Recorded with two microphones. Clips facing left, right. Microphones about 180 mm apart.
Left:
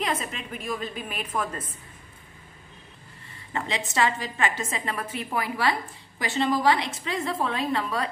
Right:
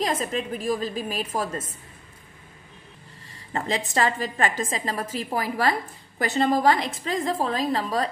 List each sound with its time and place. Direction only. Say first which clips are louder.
0.0 s a woman's voice: right 4 dB; 40° right (ahead or behind)
3.5 s a woman's voice: right 2 dB; 40° right (ahead or behind)